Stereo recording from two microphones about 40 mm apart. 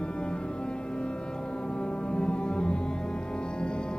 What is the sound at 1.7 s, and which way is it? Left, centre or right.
Music, left.